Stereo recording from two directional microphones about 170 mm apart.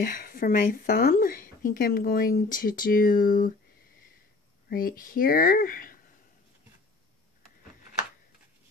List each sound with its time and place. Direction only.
0.0 s a woman's voice: 55° left (ahead or behind)
4.6 s a woman's voice: 60° left (ahead or behind)